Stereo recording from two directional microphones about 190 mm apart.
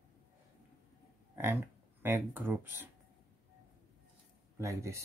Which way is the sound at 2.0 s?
10° right (ahead or behind).